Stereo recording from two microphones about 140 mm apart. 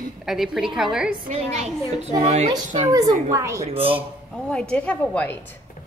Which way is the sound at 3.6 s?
45° right (ahead or behind).